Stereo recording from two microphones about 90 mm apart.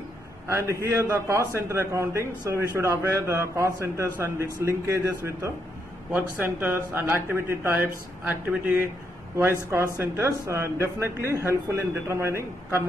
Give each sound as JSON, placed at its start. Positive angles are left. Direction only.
{"t": 0.5, "sound": "a man's voice", "side_deg": -35}